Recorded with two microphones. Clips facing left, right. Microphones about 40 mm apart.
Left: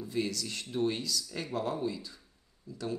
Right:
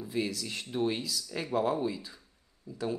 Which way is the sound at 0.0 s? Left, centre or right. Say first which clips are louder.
Even; centre.